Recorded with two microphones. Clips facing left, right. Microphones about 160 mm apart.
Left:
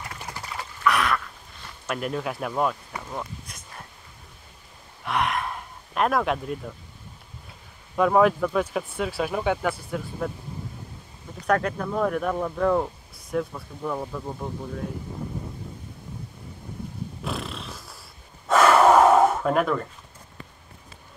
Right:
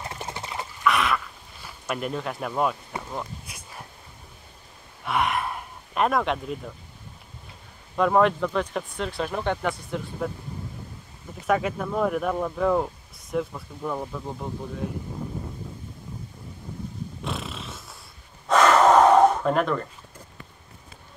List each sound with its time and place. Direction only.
0.0 s dog: 25° right (ahead or behind)
0.8 s a sound: centre (ahead or behind)
5.0 s speech: centre (ahead or behind)
7.9 s speech: 5° left (ahead or behind)
11.4 s speech: 5° right (ahead or behind)
17.2 s a sound: centre (ahead or behind)
18.5 s gasp: 5° left (ahead or behind)